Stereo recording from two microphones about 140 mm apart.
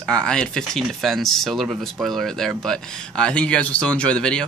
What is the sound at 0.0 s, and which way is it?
Speech, 5° left (ahead or behind).